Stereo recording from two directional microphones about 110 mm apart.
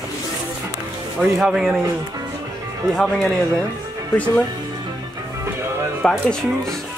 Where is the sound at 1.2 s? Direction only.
5° right (ahead or behind).